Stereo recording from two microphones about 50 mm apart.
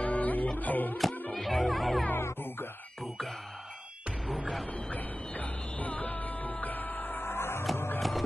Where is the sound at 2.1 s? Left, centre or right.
Left.